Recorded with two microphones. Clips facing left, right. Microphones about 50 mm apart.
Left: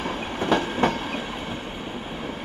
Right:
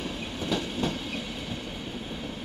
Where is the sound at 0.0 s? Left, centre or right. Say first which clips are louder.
Left 6 dB; left.